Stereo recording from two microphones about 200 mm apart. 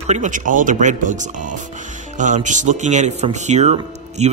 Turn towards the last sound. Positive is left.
turn(degrees=-35)  # may be behind; listen again after turning